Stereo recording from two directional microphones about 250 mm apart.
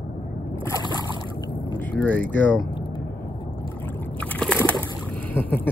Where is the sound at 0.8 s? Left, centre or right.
Centre.